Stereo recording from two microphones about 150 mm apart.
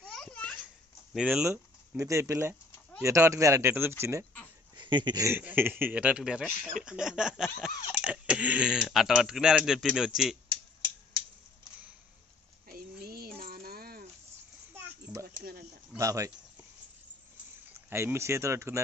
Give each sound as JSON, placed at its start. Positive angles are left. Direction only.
{"t": 0.0, "sound": "a sound", "side_deg": 5}
{"t": 1.1, "sound": "a man's voice", "side_deg": -5}
{"t": 2.0, "sound": "a man's voice", "side_deg": -20}
{"t": 4.7, "sound": "speech", "side_deg": -30}
{"t": 5.2, "sound": "a man's voice", "side_deg": -15}
{"t": 12.6, "sound": "a sound", "side_deg": -85}
{"t": 13.4, "sound": "music", "side_deg": -85}
{"t": 14.7, "sound": "a sound", "side_deg": -15}
{"t": 16.0, "sound": "speech", "side_deg": -20}
{"t": 17.8, "sound": "a man's voice", "side_deg": -15}